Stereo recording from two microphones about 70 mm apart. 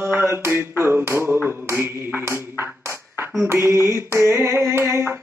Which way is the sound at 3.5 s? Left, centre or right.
Right.